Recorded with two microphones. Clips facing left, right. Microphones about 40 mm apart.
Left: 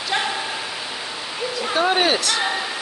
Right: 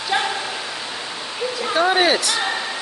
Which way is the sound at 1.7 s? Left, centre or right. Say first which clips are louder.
Right 2 dB; centre.